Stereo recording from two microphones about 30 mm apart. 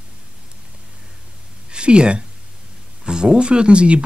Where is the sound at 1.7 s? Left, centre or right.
Right.